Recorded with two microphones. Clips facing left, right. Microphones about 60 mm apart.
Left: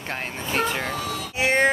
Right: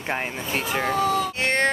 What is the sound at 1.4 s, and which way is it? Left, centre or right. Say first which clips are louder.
Music: left 5 dB; centre.